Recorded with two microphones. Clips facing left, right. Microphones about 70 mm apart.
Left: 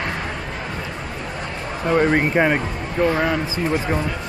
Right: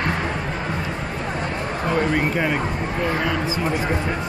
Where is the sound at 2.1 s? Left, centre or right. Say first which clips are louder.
Left 4 dB; left.